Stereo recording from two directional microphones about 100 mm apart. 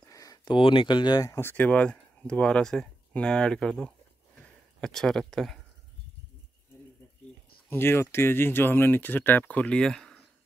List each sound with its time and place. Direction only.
0.0 s a sound: 35° left (ahead or behind)
0.5 s speech: 60° left (ahead or behind)
1.3 s speech: 20° left (ahead or behind); by 5.6 s 5° left (ahead or behind)
7.7 s speech: 25° left (ahead or behind); by 10.2 s 5° left (ahead or behind)